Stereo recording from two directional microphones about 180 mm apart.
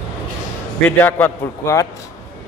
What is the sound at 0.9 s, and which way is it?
A man's voice, 10° left (ahead or behind).